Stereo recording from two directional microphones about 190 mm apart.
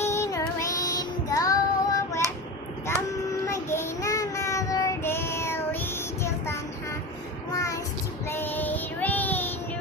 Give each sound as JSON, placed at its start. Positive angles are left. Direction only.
{"t": 0.0, "sound": "child singing", "side_deg": 15}
{"t": 3.4, "sound": "child singing", "side_deg": 15}